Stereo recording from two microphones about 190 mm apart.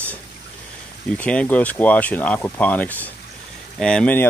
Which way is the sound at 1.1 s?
5° left (ahead or behind).